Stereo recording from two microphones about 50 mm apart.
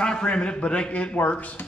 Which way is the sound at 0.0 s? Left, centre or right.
Centre.